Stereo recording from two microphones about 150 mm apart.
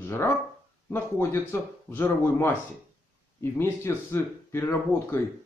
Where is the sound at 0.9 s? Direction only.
15° left (ahead or behind).